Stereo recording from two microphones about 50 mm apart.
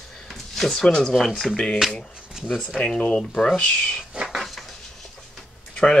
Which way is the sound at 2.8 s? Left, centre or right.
Centre.